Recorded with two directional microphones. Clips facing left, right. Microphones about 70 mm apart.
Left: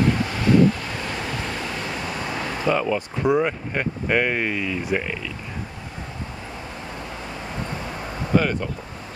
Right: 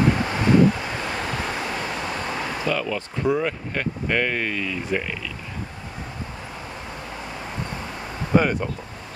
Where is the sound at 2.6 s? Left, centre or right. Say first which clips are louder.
Left 6 dB; left.